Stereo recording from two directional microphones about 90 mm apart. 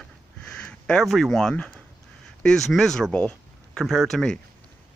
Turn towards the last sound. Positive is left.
turn(degrees=5)  # may be behind; listen again after turning